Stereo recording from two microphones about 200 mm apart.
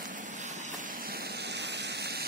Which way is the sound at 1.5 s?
60° right (ahead or behind).